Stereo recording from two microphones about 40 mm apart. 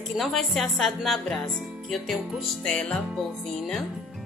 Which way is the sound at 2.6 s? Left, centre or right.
Left.